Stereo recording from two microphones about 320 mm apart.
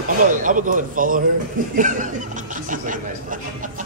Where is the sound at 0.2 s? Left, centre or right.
Right.